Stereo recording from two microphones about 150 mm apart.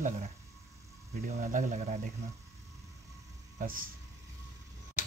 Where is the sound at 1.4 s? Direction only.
60° right (ahead or behind).